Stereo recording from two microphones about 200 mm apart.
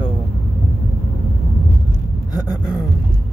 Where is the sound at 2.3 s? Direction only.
20° left (ahead or behind).